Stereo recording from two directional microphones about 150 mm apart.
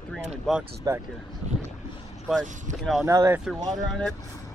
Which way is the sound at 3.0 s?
20° right (ahead or behind).